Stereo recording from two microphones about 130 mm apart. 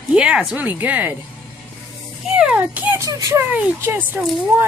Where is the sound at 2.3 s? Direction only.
10° right (ahead or behind).